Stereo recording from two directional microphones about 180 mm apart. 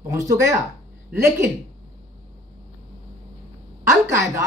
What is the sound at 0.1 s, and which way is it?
A woman's voice, 15° right (ahead or behind).